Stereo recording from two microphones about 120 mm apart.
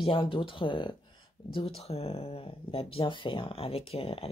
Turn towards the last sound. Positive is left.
turn(degrees=55)  # may be behind; listen again after turning